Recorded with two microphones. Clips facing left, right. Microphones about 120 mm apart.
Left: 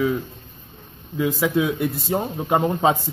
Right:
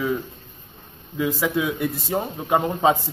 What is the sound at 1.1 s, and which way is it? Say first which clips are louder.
Speech: left 2 dB; 20° left (ahead or behind).